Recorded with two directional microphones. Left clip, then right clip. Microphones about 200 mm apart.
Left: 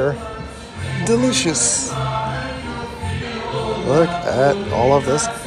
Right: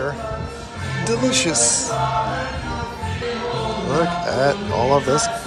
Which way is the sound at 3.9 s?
15° right (ahead or behind).